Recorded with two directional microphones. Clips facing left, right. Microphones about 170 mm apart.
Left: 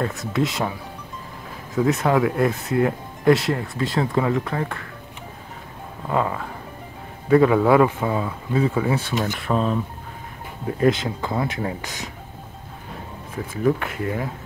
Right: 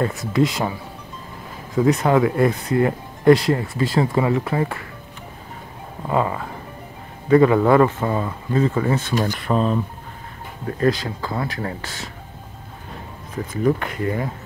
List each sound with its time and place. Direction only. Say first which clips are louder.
0.0 s speech: right 4 dB; centre (ahead or behind)
1.8 s speech: right 2 dB; centre (ahead or behind)
6.0 s speech: right 2 dB; 5° right (ahead or behind)
10.8 s speech: left 1 dB; 20° left (ahead or behind)
13.5 s speech: right 1 dB; 5° left (ahead or behind)